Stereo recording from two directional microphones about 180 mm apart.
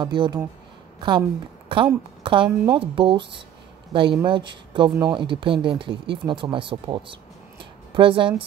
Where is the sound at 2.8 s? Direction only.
30° right (ahead or behind).